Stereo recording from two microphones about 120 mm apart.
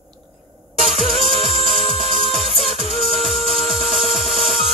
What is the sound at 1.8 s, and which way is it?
Music, 60° right (ahead or behind).